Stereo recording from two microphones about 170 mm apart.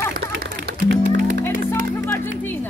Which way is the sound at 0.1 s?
75° right (ahead or behind).